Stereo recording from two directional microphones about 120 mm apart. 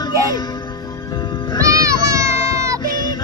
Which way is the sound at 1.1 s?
40° left (ahead or behind).